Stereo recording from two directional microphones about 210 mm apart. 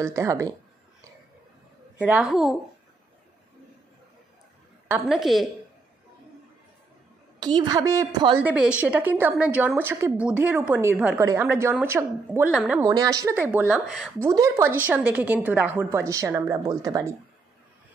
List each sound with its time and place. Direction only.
0.0 s a woman's voice: 15° right (ahead or behind)
2.0 s a woman's voice: 5° right (ahead or behind)
5.0 s a woman's voice: centre (ahead or behind)
7.3 s a woman's voice: 20° right (ahead or behind)
8.4 s a woman's voice: 5° right (ahead or behind)
12.8 s a woman's voice: 20° right (ahead or behind)